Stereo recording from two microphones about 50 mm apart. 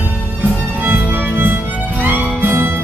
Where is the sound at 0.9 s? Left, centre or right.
Right.